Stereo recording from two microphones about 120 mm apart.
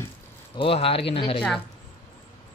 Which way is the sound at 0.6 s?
50° left (ahead or behind).